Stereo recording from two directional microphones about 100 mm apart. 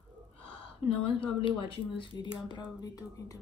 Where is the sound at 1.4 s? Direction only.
60° left (ahead or behind).